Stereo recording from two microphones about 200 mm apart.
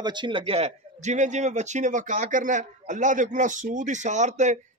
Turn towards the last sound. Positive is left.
turn(degrees=-35)  # may be behind; listen again after turning